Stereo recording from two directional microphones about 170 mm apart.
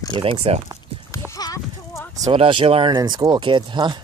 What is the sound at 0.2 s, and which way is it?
Speech, 35° right (ahead or behind).